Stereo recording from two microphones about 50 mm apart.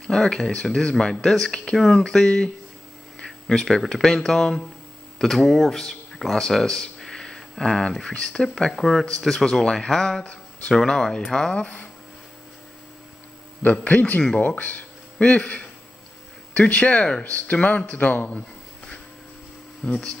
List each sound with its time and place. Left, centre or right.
0.0 s speech: centre
2.2 s speech: left
3.3 s a sound: centre
3.6 s speech: centre; by 10.7 s left
10.7 s speech: centre
13.6 s speech: left
19.8 s speech: centre